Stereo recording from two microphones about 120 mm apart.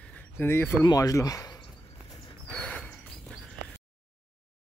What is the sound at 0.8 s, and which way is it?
Speech, 30° left (ahead or behind).